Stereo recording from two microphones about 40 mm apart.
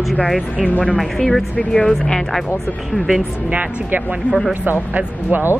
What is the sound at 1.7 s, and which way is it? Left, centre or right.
Speech, centre.